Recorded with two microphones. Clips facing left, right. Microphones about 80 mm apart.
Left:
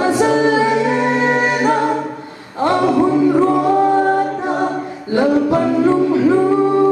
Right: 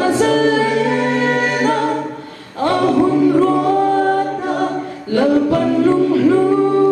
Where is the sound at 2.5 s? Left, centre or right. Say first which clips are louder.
Even; left.